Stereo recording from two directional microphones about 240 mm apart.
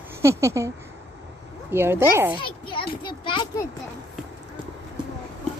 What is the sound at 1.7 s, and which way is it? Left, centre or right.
Speech, centre.